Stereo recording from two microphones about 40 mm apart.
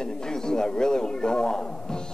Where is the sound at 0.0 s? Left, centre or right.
Centre.